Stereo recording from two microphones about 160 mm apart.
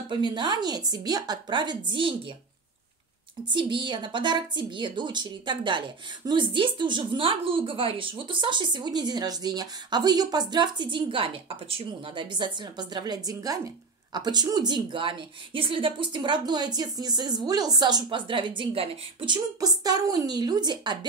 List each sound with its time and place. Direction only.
0.3 s a woman's voice: 25° right (ahead or behind)
3.5 s a woman's voice: 30° right (ahead or behind)